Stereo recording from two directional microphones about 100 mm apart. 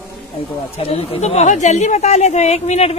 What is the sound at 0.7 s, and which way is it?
A woman's voice, 80° left.